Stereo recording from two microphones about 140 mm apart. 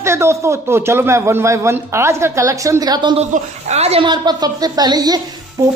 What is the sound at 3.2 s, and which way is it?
Speech, 50° right (ahead or behind).